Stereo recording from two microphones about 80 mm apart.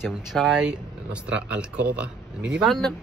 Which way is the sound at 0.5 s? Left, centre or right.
Centre.